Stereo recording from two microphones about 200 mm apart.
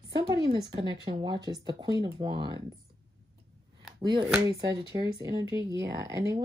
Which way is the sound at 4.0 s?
25° right (ahead or behind).